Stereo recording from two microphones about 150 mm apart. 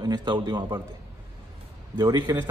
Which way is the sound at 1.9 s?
30° right (ahead or behind).